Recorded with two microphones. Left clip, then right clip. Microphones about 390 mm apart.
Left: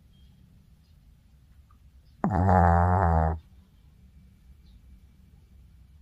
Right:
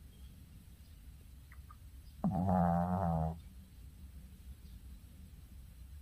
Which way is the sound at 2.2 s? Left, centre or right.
Left.